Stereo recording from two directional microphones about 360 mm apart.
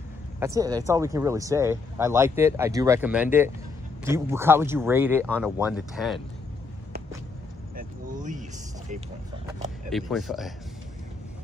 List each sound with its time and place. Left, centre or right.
0.6 s speech: centre
7.7 s vehicle: right
9.8 s speech: centre